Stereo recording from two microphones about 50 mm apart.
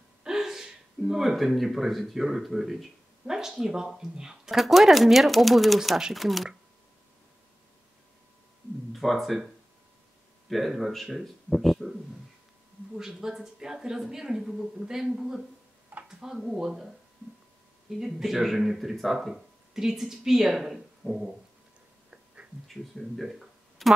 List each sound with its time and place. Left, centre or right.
0.2 s speech: centre
8.9 s speech: centre
10.5 s speech: centre
12.9 s speech: centre
17.9 s speech: centre
22.1 s a sound: right
22.9 s a sound: centre